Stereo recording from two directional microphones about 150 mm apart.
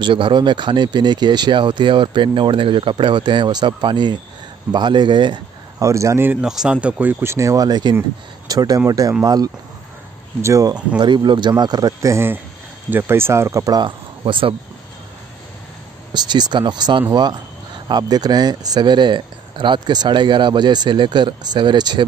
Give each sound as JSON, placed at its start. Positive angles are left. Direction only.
{"t": 0.0, "sound": "speech", "side_deg": -35}
{"t": 16.1, "sound": "speech", "side_deg": -30}